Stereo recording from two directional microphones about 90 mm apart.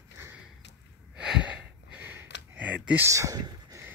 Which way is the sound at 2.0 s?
20° right (ahead or behind).